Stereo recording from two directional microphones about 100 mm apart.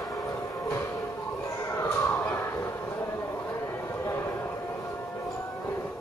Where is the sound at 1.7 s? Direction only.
25° left (ahead or behind).